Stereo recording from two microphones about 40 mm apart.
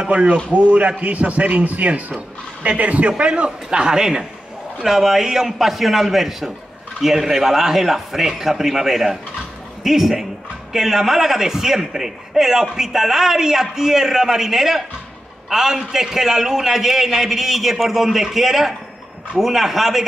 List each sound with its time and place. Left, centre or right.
0.1 s a man's voice: right; by 20.1 s centre